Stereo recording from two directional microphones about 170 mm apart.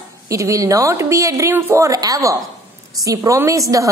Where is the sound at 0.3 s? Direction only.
20° right (ahead or behind).